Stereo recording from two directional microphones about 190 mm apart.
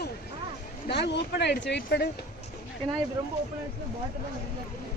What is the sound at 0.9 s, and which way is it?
Speech, 60° left (ahead or behind).